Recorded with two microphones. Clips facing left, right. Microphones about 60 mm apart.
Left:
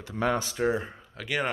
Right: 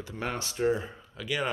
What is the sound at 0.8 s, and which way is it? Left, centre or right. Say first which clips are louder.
Speech: even; left.